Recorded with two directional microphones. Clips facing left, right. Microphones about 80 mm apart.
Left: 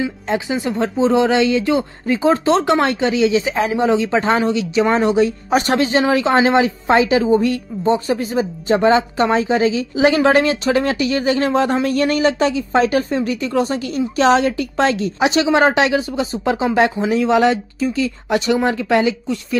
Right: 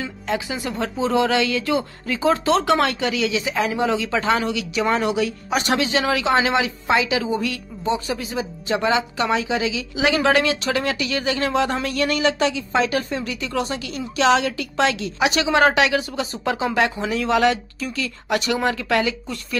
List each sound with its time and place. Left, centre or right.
0.0 s speech: left
15.2 s speech: left